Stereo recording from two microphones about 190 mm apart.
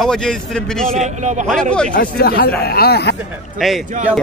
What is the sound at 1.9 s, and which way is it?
Speech, 55° left (ahead or behind).